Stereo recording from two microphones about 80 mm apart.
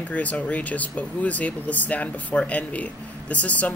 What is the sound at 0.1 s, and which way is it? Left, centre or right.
Speech, centre.